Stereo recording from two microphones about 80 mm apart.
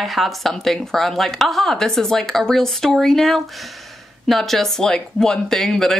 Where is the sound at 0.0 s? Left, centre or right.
Centre.